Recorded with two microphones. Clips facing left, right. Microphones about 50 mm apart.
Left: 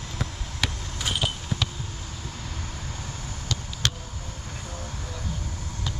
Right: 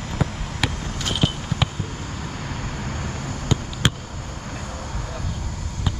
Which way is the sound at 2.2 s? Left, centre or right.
Right.